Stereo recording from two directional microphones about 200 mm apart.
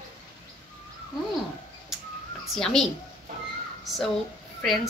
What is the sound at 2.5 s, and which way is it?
Speech, centre (ahead or behind).